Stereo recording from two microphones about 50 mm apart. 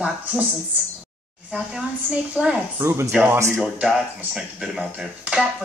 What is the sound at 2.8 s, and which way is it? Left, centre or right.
Speech, right.